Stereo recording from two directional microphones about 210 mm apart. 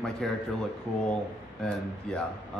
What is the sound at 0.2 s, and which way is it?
Speech, centre (ahead or behind).